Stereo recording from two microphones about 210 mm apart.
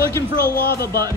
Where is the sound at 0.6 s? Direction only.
45° left (ahead or behind).